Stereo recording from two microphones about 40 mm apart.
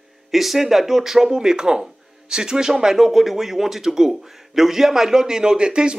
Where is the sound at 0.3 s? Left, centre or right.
Centre.